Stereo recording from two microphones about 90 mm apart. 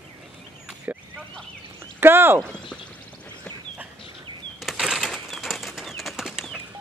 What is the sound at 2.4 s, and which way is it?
Speech, 10° left (ahead or behind).